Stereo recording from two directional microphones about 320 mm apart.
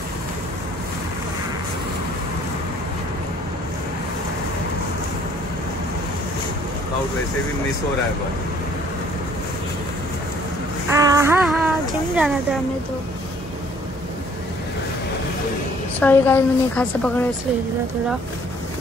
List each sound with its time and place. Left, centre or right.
10.9 s child singing: centre
16.0 s a woman's voice: centre